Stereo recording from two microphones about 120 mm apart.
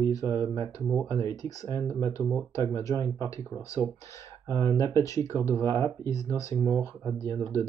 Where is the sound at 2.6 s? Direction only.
25° left (ahead or behind).